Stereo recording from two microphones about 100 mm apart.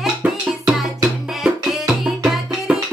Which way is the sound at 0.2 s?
15° right (ahead or behind).